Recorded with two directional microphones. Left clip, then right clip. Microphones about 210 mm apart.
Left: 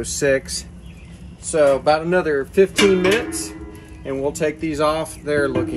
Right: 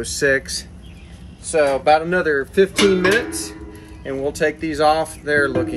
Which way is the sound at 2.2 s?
15° left (ahead or behind).